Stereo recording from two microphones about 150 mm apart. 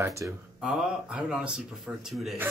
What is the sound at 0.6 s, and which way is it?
Speech, 5° right (ahead or behind).